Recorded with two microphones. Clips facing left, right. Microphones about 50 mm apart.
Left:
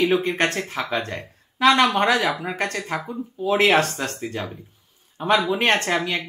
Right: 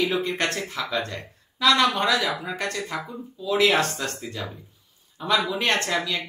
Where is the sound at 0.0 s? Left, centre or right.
Left.